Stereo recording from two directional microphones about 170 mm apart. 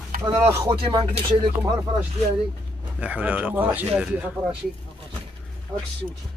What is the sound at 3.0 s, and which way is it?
Speech, 10° right (ahead or behind).